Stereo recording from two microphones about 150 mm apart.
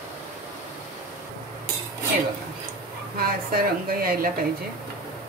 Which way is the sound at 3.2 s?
80° right.